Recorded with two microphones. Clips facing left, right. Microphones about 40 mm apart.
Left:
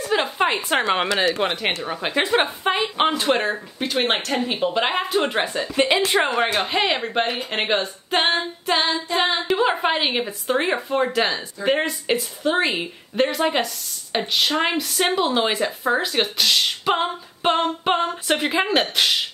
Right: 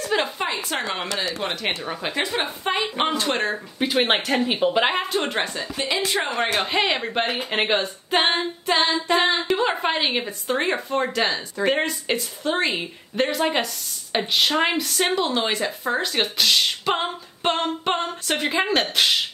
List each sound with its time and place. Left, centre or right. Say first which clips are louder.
0.1 s a sound: left 1 dB; centre
0.5 s speech: left 6 dB; left
2.2 s a woman's voice: left 6 dB; left
3.0 s speech: left 5 dB; centre
3.8 s speech: right 1 dB; centre
4.6 s female singing: right 1 dB; centre
5.8 s speech: left 6 dB; left
6.4 s female singing: left 1 dB; centre
15.1 s speech: left 2 dB; centre
18.2 s female singing: left 2 dB; centre